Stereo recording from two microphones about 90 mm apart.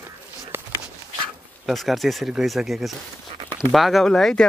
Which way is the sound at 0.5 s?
25° right (ahead or behind).